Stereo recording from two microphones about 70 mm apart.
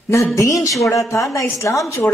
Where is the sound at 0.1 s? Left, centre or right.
Left.